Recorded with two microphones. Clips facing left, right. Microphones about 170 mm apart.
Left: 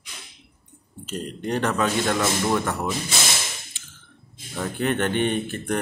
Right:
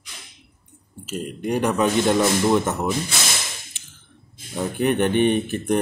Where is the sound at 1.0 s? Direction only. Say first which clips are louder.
Right 3 dB; 5° right (ahead or behind).